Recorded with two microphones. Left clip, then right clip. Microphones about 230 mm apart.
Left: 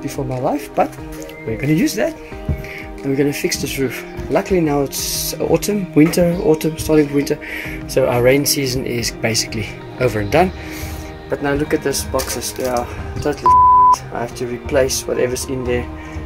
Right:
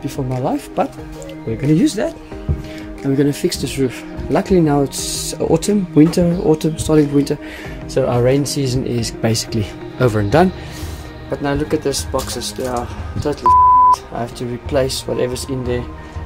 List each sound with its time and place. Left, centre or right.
0.0 s speech: centre
3.2 s speech: centre
11.4 s speech: centre